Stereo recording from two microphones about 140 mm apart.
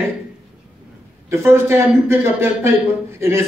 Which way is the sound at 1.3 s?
15° right (ahead or behind).